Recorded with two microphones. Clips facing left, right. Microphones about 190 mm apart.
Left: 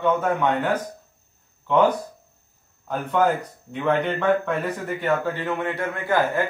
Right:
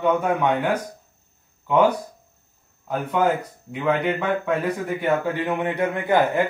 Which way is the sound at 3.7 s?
10° right (ahead or behind).